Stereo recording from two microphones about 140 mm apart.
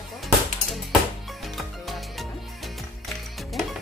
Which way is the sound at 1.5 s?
Centre (ahead or behind).